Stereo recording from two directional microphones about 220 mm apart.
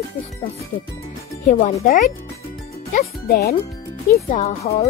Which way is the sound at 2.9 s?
45° left (ahead or behind).